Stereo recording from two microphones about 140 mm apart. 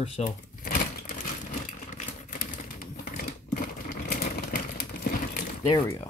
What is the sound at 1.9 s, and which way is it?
Crumpling, 85° left.